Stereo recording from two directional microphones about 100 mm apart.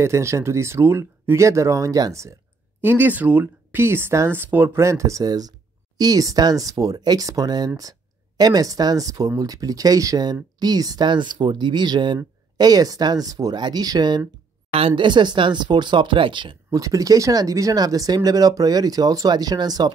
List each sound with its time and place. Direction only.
0.0 s speech: 30° right (ahead or behind)
2.8 s speech: 20° right (ahead or behind); by 14.2 s 45° right (ahead or behind)
14.7 s speech: 70° right (ahead or behind)
16.7 s speech: 35° right (ahead or behind)